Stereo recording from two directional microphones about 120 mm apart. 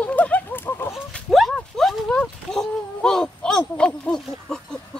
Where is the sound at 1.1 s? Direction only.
Centre (ahead or behind).